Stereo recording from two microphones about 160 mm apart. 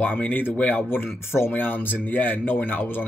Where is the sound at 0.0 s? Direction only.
10° left (ahead or behind).